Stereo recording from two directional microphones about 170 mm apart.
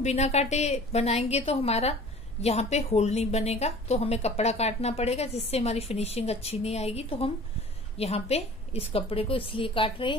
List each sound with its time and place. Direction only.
0.0 s a woman's voice: 40° left (ahead or behind)